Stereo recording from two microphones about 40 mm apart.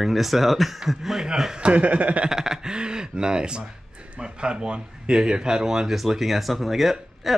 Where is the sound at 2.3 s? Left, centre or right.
Centre.